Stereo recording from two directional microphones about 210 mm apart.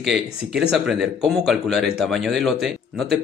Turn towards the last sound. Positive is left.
turn(degrees=0)  # may be behind; listen again after turning